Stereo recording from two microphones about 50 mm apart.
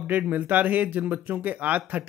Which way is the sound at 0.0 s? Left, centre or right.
Right.